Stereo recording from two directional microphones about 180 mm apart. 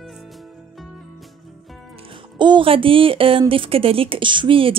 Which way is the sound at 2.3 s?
25° right (ahead or behind).